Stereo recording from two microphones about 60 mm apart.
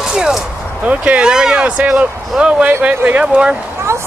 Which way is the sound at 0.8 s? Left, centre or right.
Right.